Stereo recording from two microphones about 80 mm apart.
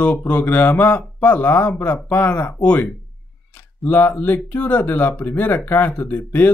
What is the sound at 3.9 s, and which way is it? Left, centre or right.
Speech, left.